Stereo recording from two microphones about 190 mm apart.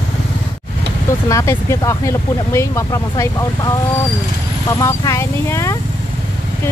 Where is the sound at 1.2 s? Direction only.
15° left (ahead or behind).